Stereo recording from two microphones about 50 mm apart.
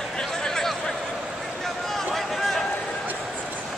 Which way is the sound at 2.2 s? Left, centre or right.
Centre.